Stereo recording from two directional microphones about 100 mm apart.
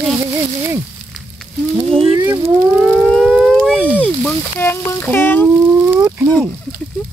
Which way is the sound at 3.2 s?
Centre (ahead or behind).